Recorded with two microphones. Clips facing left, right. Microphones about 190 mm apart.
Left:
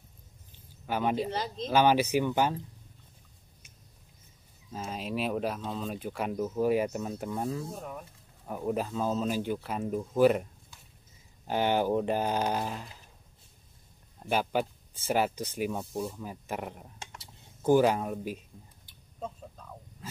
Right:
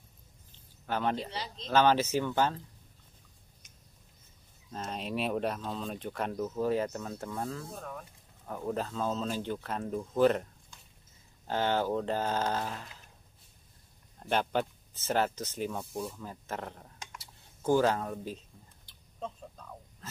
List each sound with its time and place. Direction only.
0.8 s speech: 10° left (ahead or behind)
1.3 s speech: 50° left (ahead or behind)
1.7 s speech: 10° left (ahead or behind)
4.6 s speech: 5° left (ahead or behind)
14.2 s speech: 10° left (ahead or behind)
17.0 s a sound: 30° left (ahead or behind)
17.6 s speech: 15° left (ahead or behind)
18.9 s a sound: 5° left (ahead or behind)